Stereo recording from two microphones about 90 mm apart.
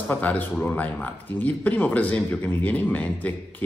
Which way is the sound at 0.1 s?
20° left (ahead or behind).